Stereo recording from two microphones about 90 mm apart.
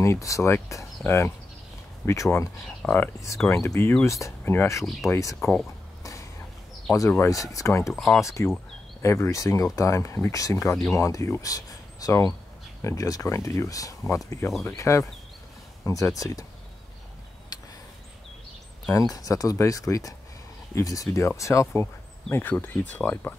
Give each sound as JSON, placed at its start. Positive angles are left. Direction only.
{"t": 0.0, "sound": "speech", "side_deg": 35}
{"t": 2.8, "sound": "speech", "side_deg": 20}
{"t": 3.6, "sound": "speech", "side_deg": 30}
{"t": 6.9, "sound": "speech", "side_deg": 30}
{"t": 7.2, "sound": "speech", "side_deg": 40}
{"t": 7.9, "sound": "speech", "side_deg": 5}
{"t": 8.2, "sound": "speech", "side_deg": 35}
{"t": 18.9, "sound": "speech", "side_deg": 40}
{"t": 22.3, "sound": "speech", "side_deg": 20}